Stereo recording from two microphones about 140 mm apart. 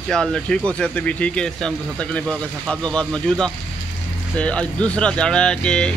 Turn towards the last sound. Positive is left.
turn(degrees=5)  # may be behind; listen again after turning